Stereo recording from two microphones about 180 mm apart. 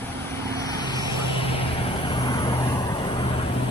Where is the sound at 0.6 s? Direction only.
25° left (ahead or behind).